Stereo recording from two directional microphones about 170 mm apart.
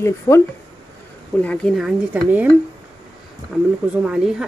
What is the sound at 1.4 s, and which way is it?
Speech, 5° left (ahead or behind).